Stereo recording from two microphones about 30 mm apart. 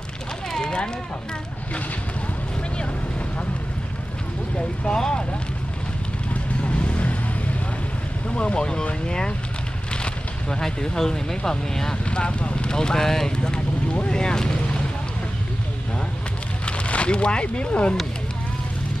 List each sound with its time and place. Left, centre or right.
4.9 s speech: left
6.6 s vehicle: left
8.3 s speech: left
10.5 s speech: left
12.0 s speech: left
12.7 s speech: left
16.6 s speech: left